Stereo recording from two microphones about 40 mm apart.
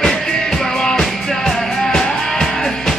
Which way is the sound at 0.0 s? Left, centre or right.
Centre.